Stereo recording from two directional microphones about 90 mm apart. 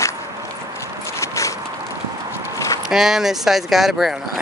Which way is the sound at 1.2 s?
35° left (ahead or behind).